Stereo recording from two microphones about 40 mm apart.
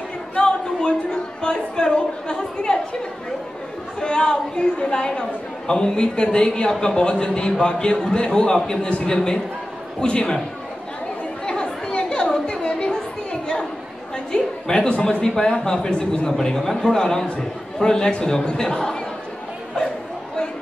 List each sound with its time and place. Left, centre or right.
0.4 s a sound: left
1.4 s a man's voice: left
4.0 s a man's voice: left
11.4 s chatter: left
14.1 s a sound: centre
15.2 s a man's voice: centre